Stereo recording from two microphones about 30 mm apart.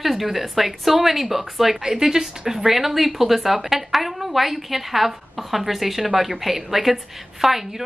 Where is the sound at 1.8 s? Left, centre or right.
Right.